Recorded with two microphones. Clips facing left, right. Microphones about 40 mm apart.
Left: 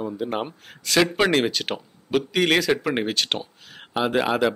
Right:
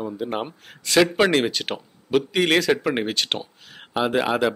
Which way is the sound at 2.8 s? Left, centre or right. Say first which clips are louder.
Even; centre.